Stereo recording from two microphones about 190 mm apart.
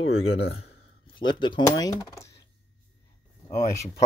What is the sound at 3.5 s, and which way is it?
Speech, 15° left (ahead or behind).